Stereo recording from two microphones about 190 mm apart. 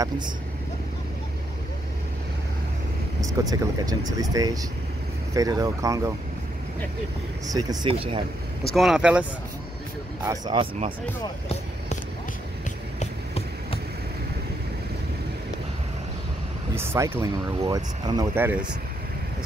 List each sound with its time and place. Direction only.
3.2 s speech: 20° right (ahead or behind)
7.4 s speech: 20° right (ahead or behind)
8.7 s speech: 5° right (ahead or behind)
10.2 s speech: 20° right (ahead or behind)
13.0 s a sound: 30° left (ahead or behind)
16.7 s speech: 15° right (ahead or behind)